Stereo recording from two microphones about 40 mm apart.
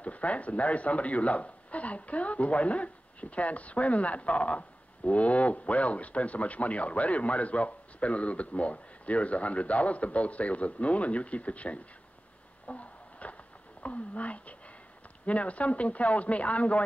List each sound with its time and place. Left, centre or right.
0.0 s speech: left
12.6 s a sound: left
15.2 s speech: left